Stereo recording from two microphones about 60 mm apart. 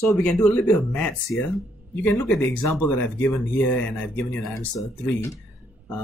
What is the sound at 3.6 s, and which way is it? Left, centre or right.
Speech, left.